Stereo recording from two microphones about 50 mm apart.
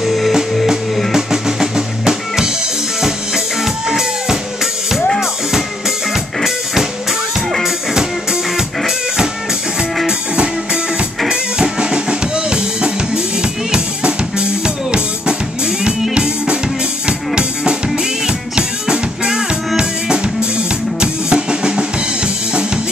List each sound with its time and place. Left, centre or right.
0.0 s music: centre
1.1 s drum: centre
3.0 s music: centre
5.2 s drum kit: centre
6.4 s music: centre
17.8 s drum kit: centre
19.8 s drum: centre